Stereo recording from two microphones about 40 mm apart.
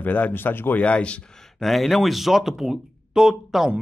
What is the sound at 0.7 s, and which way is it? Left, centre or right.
Speech, left.